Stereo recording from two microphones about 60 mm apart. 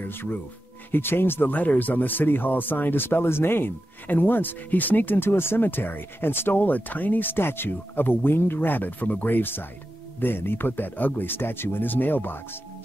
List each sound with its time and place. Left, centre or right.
0.0 s speech: left